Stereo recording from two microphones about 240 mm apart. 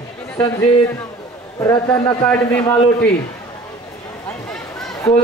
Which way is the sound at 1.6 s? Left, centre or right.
Centre.